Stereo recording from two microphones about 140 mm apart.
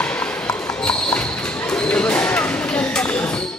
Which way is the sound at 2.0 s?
10° left (ahead or behind).